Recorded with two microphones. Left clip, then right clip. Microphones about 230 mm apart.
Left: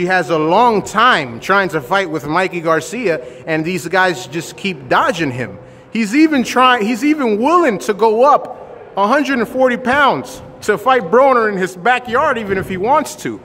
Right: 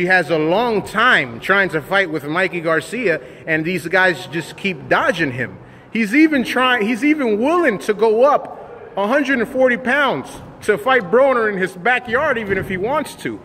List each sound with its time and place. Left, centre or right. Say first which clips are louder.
0.0 s a man's voice: left 1 dB; centre